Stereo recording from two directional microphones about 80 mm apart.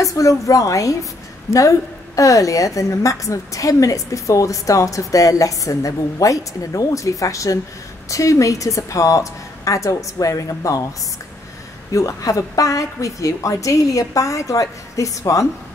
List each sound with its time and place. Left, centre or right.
0.0 s a woman's voice: left
11.9 s a woman's voice: left